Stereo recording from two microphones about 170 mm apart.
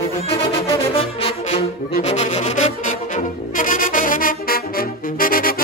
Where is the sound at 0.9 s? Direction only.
35° left (ahead or behind).